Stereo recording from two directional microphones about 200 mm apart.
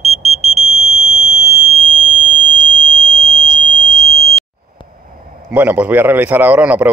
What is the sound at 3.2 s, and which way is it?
Smoke detector, 40° left (ahead or behind).